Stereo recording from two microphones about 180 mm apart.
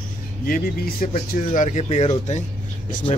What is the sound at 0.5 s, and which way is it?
Speech, 50° left (ahead or behind).